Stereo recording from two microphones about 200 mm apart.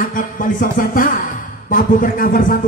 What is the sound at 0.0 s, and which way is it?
A man's voice, 45° left (ahead or behind).